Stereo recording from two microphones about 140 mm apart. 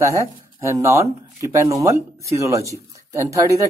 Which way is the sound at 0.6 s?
20° right (ahead or behind).